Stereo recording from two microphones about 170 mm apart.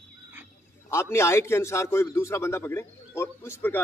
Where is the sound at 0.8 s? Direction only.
15° left (ahead or behind).